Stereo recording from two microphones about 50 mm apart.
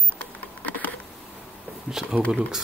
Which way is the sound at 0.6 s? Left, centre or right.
Left.